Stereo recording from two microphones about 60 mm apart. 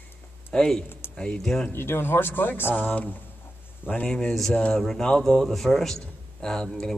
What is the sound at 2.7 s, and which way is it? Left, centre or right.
A man's voice, left.